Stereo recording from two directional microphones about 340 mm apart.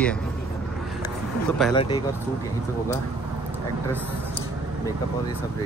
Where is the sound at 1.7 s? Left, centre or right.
Centre.